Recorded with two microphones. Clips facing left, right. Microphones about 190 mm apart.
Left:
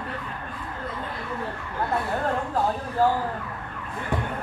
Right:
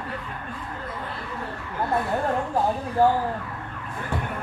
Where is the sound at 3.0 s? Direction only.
15° right (ahead or behind).